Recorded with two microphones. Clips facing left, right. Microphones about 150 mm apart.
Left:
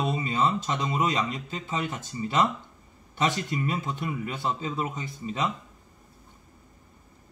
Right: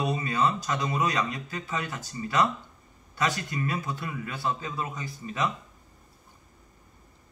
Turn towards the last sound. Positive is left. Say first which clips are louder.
# left 1 dB
turn(degrees=20)  # may be behind; listen again after turning